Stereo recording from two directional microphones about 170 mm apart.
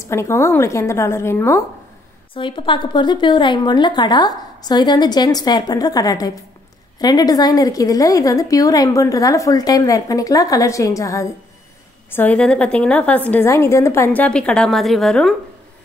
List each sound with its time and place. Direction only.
0.0 s a woman's voice: 15° left (ahead or behind)
2.3 s a woman's voice: 30° left (ahead or behind); by 15.3 s centre (ahead or behind)